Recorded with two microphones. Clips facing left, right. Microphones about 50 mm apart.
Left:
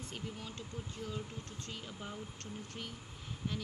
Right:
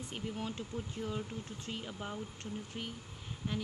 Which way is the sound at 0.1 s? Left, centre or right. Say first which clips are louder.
Right 7 dB; right.